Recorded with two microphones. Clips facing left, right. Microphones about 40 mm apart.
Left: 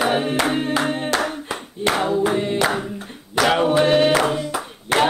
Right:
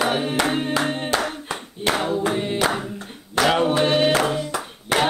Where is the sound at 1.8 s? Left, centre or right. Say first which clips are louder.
Left 3 dB; centre.